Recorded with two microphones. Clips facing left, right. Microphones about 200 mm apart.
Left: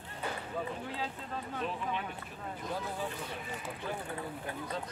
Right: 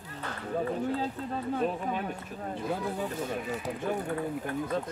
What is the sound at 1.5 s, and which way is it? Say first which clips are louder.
Speech: right 5 dB; 45° right (ahead or behind).